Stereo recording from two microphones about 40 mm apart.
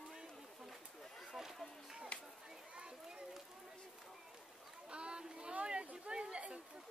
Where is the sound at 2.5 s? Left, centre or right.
Right.